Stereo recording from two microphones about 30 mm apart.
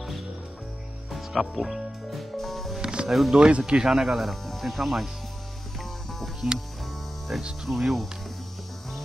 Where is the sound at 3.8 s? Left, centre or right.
Centre.